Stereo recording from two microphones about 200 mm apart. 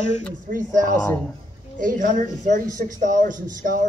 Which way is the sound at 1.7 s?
40° right (ahead or behind).